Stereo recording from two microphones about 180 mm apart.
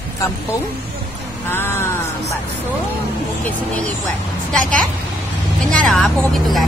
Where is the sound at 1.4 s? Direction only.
10° left (ahead or behind).